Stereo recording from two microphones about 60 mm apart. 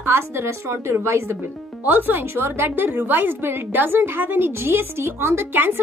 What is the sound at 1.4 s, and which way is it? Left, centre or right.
A woman's voice, right.